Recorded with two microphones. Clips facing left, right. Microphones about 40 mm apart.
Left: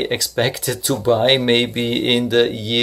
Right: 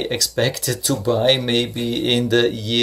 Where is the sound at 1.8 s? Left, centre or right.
Left.